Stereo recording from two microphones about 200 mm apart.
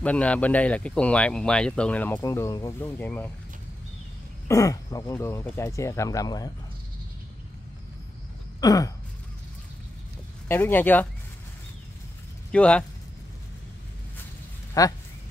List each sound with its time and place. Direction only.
0.0 s speech: 5° left (ahead or behind)
4.5 s speech: 15° left (ahead or behind)
8.5 s a sound: 20° left (ahead or behind)
10.5 s speech: 10° left (ahead or behind)
12.4 s speech: 5° left (ahead or behind)
14.7 s speech: 15° left (ahead or behind)